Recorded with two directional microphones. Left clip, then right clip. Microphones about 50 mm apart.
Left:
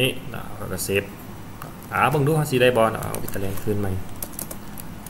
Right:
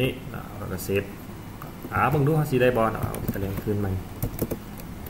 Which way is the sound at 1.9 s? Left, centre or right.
Centre.